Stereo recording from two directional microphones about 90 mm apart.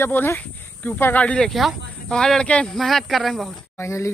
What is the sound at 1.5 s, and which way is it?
Speech, centre (ahead or behind).